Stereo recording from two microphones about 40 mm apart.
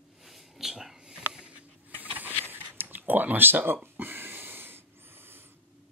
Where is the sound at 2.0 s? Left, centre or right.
Right.